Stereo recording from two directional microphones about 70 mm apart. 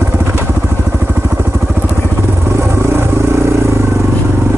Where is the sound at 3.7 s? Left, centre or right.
Right.